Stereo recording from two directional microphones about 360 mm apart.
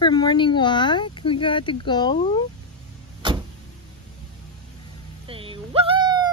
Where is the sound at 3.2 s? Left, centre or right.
Centre.